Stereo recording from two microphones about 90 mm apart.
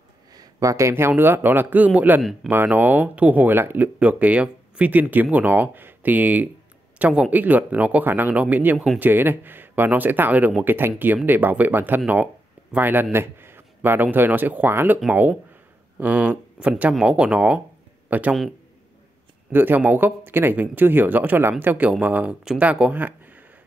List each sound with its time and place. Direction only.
0.3 s speech: 40° right (ahead or behind); by 8.7 s 20° right (ahead or behind)
8.7 s speech: centre (ahead or behind)
9.0 s a man's voice: 25° right (ahead or behind)
19.5 s speech: 20° right (ahead or behind)